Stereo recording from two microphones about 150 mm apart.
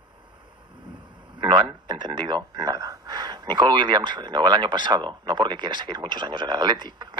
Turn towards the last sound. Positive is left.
turn(degrees=-30)  # may be behind; listen again after turning